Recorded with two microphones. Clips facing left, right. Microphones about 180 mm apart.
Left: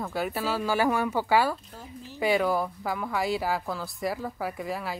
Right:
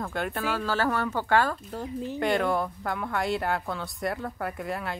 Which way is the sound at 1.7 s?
75° right (ahead or behind).